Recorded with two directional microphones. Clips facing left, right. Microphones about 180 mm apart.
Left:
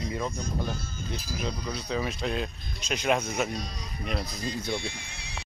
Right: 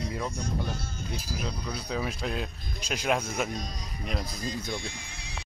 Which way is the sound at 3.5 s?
45° right (ahead or behind).